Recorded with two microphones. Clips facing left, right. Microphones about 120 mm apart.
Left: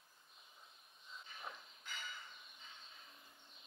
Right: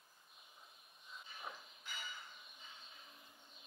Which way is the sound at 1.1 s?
5° right (ahead or behind).